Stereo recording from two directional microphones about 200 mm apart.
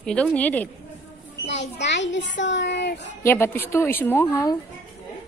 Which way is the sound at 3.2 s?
10° left (ahead or behind).